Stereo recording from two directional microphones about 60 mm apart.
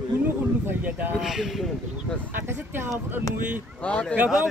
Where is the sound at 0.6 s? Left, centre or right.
Right.